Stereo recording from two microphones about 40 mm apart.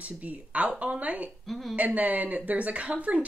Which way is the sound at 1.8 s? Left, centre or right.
Right.